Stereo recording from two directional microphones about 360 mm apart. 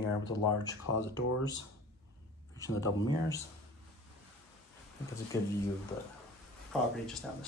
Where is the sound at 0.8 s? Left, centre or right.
Left.